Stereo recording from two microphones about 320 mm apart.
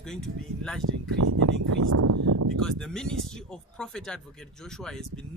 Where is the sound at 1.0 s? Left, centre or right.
Right.